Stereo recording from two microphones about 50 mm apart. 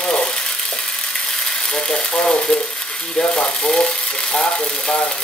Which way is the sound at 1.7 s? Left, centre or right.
Centre.